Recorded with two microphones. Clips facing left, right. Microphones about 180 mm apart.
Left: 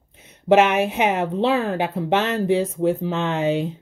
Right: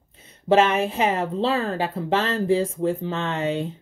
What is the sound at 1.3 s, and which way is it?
Speech, 15° left (ahead or behind).